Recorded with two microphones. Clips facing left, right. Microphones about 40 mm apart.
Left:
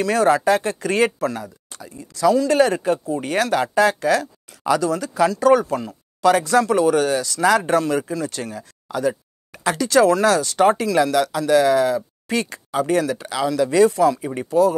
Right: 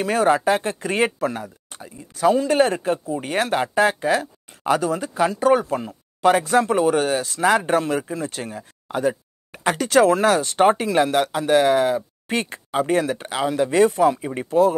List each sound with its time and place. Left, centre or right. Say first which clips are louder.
0.0 s speech: left 1 dB; right
14.2 s speech: left 1 dB; right
14.5 s speech: even; right